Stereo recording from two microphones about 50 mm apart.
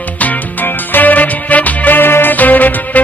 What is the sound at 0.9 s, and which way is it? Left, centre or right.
Music, left.